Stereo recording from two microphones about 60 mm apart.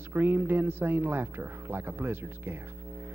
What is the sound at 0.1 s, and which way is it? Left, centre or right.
A man's voice, right.